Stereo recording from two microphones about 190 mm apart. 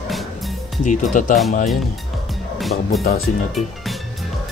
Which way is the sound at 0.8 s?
40° left (ahead or behind).